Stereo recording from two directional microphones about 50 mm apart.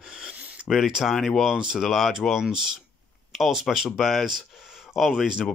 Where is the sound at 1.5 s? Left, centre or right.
Centre.